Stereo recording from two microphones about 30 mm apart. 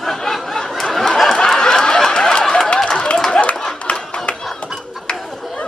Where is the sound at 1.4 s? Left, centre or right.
Left.